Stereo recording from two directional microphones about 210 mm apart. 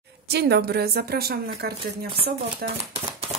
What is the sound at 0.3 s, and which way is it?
Speech, 50° right (ahead or behind).